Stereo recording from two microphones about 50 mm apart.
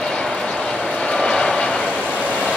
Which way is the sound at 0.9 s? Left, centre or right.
Centre.